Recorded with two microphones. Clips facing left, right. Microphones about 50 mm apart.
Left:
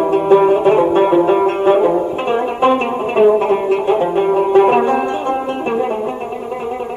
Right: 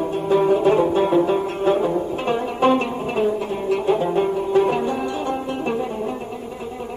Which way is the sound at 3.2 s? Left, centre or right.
Left.